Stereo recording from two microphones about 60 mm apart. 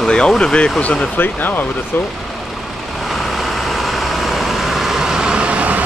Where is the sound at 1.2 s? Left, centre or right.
Left.